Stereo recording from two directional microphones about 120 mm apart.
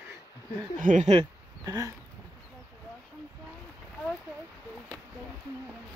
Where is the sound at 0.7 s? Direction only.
90° right.